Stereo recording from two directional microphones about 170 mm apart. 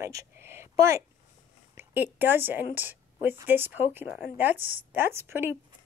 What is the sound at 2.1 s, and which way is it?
Speech, 10° right (ahead or behind).